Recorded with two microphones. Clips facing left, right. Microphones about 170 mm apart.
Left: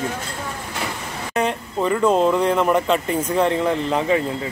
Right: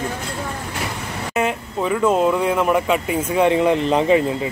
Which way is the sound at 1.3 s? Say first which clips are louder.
Even; 5° right (ahead or behind).